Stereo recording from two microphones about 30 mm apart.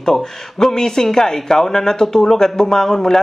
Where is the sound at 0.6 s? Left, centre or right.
Centre.